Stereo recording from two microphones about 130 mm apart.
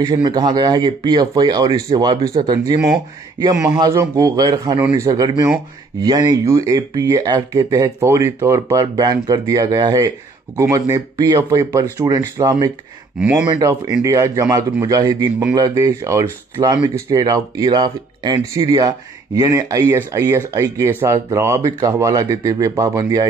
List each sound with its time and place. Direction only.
0.0 s speech: 30° right (ahead or behind)